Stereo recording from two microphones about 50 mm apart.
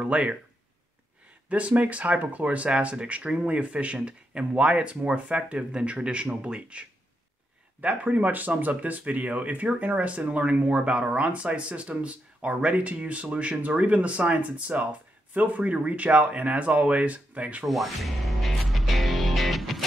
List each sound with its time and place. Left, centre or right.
0.0 s speech: right
1.5 s speech: right
17.6 s music: centre